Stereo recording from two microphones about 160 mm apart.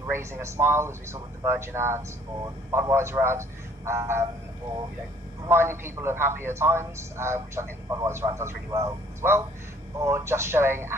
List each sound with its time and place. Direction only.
0.0 s a man's voice: 15° right (ahead or behind)
5.4 s a man's voice: 15° right (ahead or behind)